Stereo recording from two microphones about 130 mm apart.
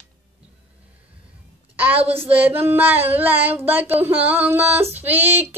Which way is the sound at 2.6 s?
15° right (ahead or behind).